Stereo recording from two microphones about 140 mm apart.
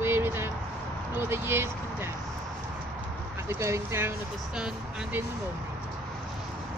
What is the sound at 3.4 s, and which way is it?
Speech, 20° right (ahead or behind).